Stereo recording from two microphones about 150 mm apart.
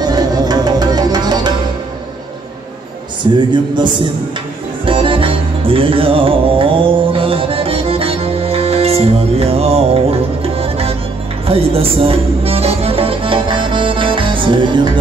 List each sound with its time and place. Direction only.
0.0 s music: 25° right (ahead or behind)
3.3 s a man's voice: 30° right (ahead or behind)
4.8 s music: 35° right (ahead or behind)